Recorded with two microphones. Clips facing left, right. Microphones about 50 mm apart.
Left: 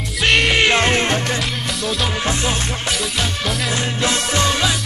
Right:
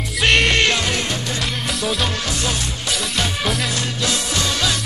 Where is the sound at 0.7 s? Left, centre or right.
Left.